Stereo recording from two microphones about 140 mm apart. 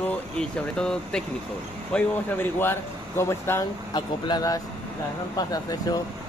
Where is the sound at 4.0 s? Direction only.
30° left (ahead or behind).